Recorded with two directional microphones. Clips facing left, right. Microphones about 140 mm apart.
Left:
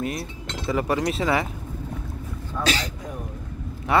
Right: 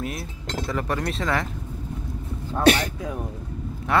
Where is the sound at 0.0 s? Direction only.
Centre (ahead or behind).